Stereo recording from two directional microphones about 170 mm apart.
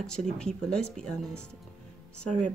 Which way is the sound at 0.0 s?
5° left (ahead or behind).